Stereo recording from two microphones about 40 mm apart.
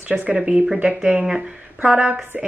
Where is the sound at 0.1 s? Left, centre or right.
Centre.